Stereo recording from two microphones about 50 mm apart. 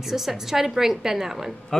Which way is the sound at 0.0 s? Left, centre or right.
Centre.